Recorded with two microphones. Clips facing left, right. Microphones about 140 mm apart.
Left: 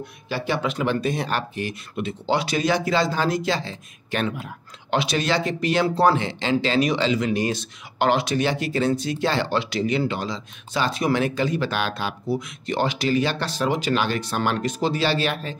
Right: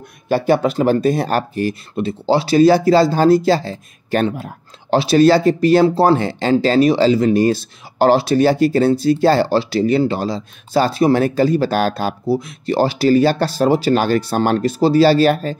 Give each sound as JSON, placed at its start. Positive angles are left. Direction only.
{"t": 0.3, "sound": "speech", "side_deg": -45}